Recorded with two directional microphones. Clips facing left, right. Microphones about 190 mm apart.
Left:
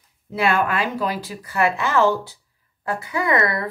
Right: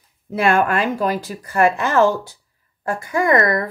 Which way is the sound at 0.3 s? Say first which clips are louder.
Right 3 dB; 45° right (ahead or behind).